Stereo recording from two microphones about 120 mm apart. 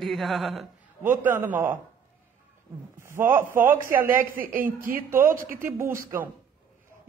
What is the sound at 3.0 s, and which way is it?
A man's voice, 20° right (ahead or behind).